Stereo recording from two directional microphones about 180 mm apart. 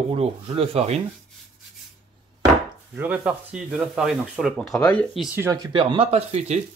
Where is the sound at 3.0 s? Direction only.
5° right (ahead or behind).